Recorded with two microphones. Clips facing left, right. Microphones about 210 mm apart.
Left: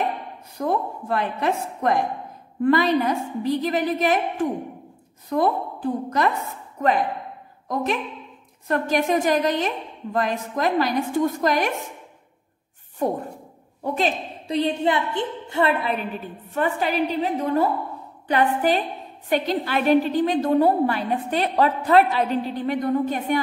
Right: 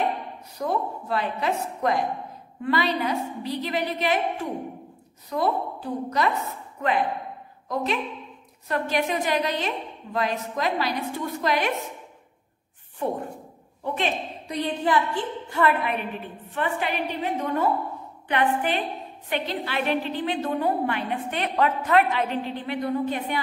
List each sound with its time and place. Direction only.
0.6 s a woman's voice: 50° left (ahead or behind)
13.0 s a woman's voice: 40° left (ahead or behind)
14.6 s a woman's voice: 25° left (ahead or behind)
16.4 s a woman's voice: 40° left (ahead or behind)